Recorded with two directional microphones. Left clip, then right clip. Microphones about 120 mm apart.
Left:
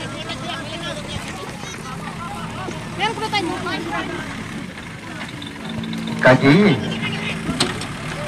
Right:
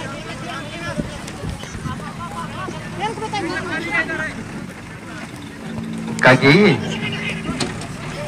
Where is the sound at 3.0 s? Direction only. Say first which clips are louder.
Left 3 dB; 35° left (ahead or behind).